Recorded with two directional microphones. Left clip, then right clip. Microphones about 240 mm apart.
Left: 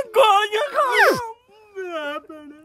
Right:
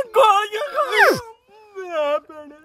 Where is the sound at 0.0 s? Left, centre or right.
Centre.